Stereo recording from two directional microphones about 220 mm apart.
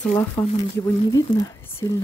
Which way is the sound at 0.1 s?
10° left (ahead or behind).